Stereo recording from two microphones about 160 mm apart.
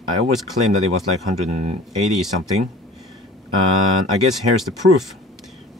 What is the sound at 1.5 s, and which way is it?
Speech, 45° right (ahead or behind).